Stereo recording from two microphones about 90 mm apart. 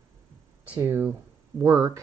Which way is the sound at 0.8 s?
25° right (ahead or behind).